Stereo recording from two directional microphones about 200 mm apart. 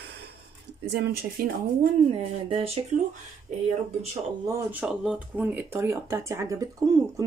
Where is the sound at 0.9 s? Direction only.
55° right (ahead or behind).